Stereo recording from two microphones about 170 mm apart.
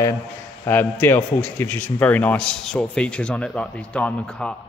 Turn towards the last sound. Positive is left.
turn(degrees=5)  # may be behind; listen again after turning